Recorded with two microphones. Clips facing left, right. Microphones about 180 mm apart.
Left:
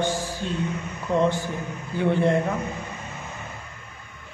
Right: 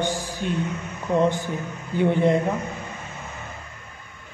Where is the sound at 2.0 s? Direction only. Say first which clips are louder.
Right 2 dB; 15° right (ahead or behind).